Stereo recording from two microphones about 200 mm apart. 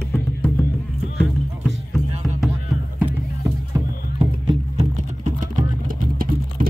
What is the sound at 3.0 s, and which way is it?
Music, 10° right (ahead or behind).